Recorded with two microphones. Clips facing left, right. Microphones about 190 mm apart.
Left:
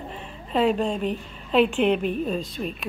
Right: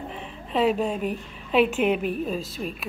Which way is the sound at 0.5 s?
5° right (ahead or behind).